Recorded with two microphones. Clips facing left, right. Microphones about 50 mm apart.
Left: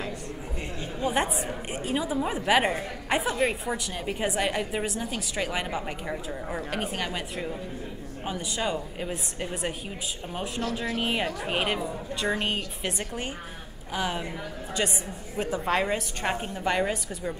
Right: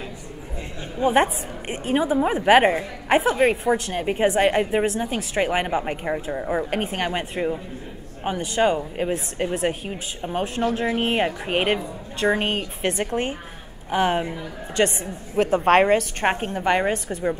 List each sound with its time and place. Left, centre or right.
0.7 s a woman's voice: right
3.1 s speech: right
4.0 s speech: right
6.4 s speech: centre
6.7 s speech: right
10.6 s a woman's voice: right
11.0 s a woman's voice: right
13.8 s a woman's voice: right
15.3 s a woman's voice: right